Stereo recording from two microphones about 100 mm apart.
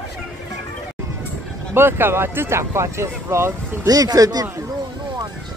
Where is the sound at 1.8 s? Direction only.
20° right (ahead or behind); by 4.4 s 40° right (ahead or behind).